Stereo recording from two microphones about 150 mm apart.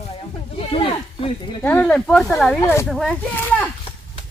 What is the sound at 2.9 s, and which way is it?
Speech, centre (ahead or behind).